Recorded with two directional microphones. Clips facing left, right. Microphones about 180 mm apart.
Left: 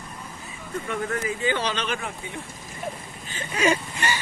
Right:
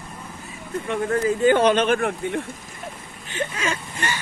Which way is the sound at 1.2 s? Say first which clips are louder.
Right 14 dB; 50° right (ahead or behind).